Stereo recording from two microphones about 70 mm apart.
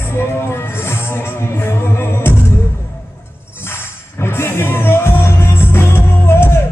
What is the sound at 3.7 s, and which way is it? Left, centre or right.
Music, left.